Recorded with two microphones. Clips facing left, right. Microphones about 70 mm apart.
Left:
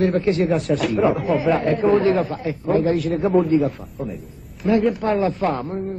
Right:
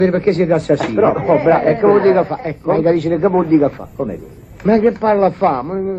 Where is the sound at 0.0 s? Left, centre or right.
Right.